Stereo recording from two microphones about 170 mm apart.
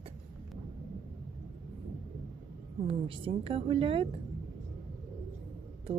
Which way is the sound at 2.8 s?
30° right (ahead or behind).